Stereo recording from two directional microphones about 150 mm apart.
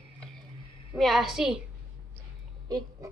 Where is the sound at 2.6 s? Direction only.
25° right (ahead or behind).